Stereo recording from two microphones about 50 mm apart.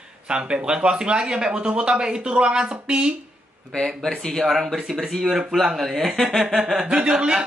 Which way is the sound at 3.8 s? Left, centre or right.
Centre.